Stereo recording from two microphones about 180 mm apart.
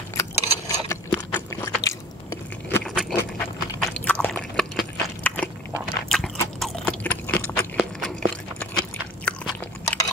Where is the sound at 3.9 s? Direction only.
5° left (ahead or behind).